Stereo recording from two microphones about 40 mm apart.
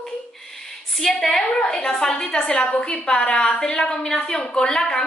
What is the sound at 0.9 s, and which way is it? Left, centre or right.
Speech, centre.